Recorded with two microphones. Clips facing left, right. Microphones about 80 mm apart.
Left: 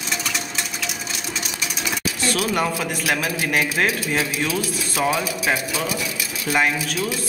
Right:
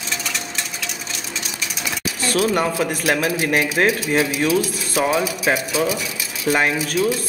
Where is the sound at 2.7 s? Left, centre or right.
Right.